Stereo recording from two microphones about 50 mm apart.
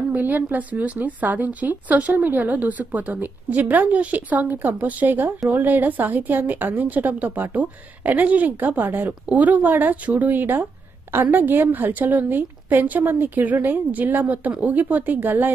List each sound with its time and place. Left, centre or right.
0.1 s a woman's voice: right